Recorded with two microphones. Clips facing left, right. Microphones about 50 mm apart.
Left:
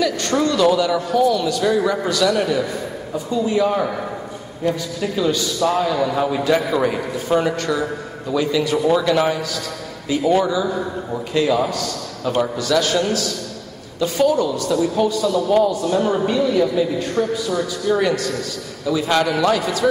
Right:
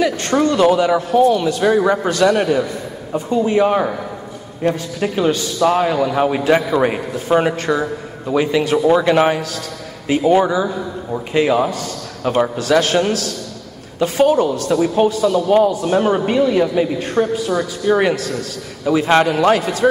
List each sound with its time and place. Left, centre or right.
0.0 s a man's voice: right